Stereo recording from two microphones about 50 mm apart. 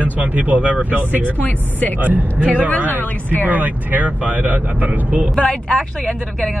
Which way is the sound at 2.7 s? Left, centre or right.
Left.